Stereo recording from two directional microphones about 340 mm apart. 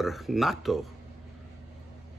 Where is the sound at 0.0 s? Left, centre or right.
Centre.